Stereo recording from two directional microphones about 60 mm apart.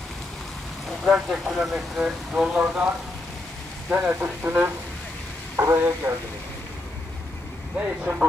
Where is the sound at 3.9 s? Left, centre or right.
Right.